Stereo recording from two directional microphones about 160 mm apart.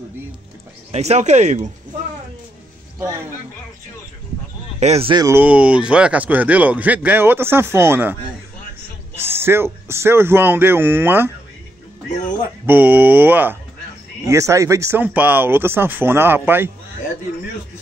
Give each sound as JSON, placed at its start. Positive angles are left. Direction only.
{"t": 0.9, "sound": "speech", "side_deg": -45}
{"t": 4.7, "sound": "speech", "side_deg": -40}
{"t": 5.1, "sound": "speech", "side_deg": -20}
{"t": 5.4, "sound": "a man's voice", "side_deg": -5}
{"t": 9.3, "sound": "a man's voice", "side_deg": -15}
{"t": 12.6, "sound": "a man's voice", "side_deg": -10}